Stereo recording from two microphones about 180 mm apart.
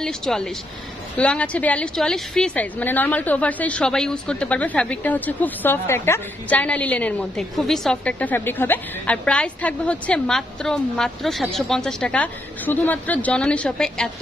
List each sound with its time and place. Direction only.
0.0 s a woman's voice: 5° left (ahead or behind)